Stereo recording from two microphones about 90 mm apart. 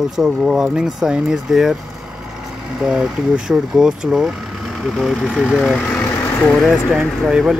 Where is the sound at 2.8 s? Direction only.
5° right (ahead or behind).